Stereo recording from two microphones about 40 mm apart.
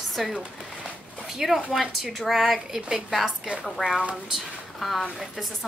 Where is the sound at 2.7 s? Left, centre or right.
Centre.